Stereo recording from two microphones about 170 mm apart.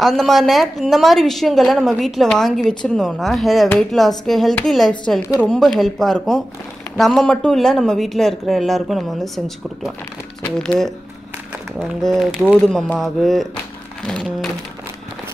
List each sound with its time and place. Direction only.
0.0 s a woman's voice: centre (ahead or behind)
10.6 s a woman's voice: 5° left (ahead or behind)
14.0 s a sound: 5° left (ahead or behind)